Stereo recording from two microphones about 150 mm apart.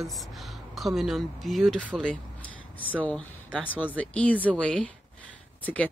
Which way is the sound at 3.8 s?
10° left (ahead or behind).